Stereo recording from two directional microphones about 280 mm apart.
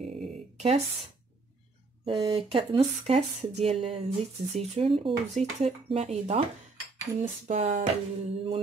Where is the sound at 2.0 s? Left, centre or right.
Centre.